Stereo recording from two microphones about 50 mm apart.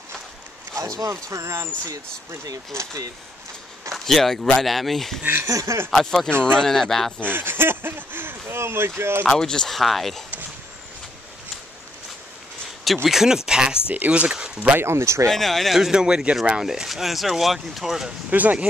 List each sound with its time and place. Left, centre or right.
0.7 s speech: right
3.9 s speech: centre
5.5 s speech: right
6.0 s speech: centre
7.2 s speech: right
9.2 s speech: centre
9.8 s speech: centre
12.8 s speech: centre
13.2 s speech: centre
14.8 s speech: right
15.2 s speech: centre
18.3 s speech: right